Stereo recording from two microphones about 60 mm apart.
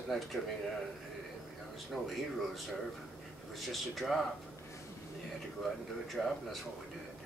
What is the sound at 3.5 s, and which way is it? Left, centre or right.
Speech, centre.